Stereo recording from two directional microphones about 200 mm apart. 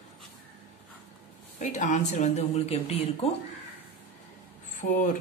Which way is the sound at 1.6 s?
35° left (ahead or behind).